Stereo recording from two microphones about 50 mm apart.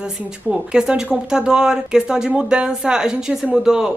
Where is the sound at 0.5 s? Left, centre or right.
Centre.